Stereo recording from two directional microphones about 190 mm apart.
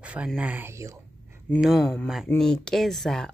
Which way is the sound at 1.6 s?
Centre (ahead or behind).